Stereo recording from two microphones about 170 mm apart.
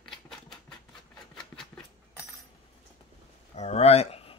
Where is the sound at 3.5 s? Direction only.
40° left (ahead or behind).